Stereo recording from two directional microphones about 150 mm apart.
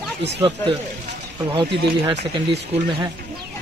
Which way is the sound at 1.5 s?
30° right (ahead or behind).